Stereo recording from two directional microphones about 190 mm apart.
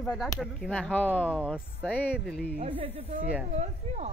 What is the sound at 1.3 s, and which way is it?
Speech, 5° right (ahead or behind).